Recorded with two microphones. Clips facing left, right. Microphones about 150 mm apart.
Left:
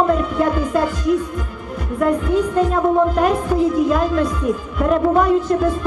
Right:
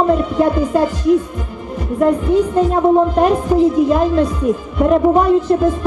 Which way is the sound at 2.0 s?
15° right (ahead or behind).